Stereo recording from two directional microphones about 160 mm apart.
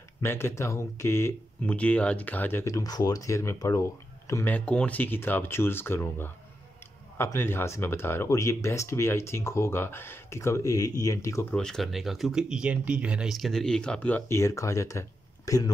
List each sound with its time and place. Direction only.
0.2 s speech: 15° left (ahead or behind)
11.5 s speech: 5° left (ahead or behind); by 15.7 s 20° left (ahead or behind)